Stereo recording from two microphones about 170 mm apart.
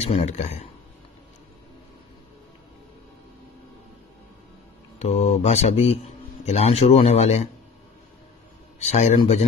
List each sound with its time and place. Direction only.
0.0 s speech: 40° left (ahead or behind)
4.9 s speech: 40° left (ahead or behind)
8.7 s speech: 40° left (ahead or behind)